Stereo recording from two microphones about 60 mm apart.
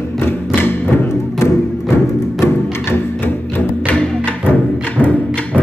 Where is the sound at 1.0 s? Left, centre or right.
Left.